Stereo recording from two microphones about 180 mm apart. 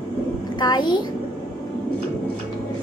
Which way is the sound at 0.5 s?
25° left (ahead or behind).